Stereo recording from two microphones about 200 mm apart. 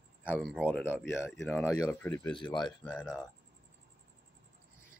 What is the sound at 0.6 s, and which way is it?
Speech, 10° left (ahead or behind).